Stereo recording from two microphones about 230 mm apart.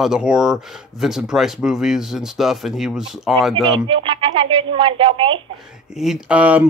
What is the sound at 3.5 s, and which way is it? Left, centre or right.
Speech, right.